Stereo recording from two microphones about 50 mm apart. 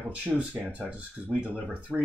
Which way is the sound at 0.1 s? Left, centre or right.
Right.